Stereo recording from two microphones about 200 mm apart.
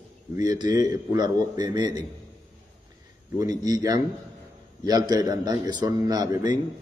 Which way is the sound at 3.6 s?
20° right (ahead or behind).